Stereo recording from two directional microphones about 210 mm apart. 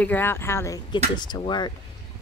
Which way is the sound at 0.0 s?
10° left (ahead or behind).